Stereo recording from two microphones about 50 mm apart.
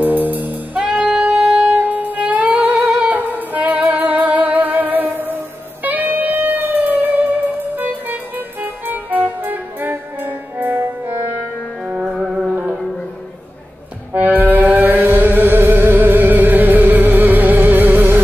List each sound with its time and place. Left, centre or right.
0.0 s music: right
11.8 s music: centre
14.1 s music: right